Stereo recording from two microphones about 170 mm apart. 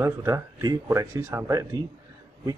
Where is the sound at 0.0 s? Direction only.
15° right (ahead or behind).